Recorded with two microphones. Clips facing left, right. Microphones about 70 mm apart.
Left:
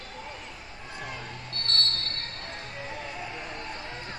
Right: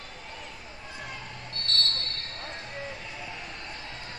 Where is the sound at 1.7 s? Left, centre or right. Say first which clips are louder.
Even; left.